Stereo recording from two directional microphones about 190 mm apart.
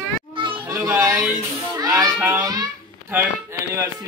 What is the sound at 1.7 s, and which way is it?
A child's voice, 20° right (ahead or behind).